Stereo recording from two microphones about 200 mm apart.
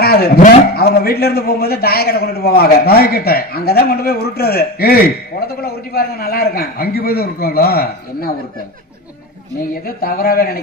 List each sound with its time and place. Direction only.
0.0 s a man's voice: 50° left (ahead or behind)
9.6 s a man's voice: 45° left (ahead or behind)